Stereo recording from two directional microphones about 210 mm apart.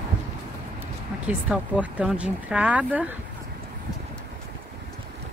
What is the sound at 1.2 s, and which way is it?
Speech, 5° right (ahead or behind).